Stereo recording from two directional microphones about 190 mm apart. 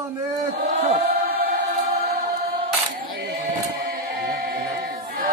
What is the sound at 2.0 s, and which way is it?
Choir, 55° right (ahead or behind).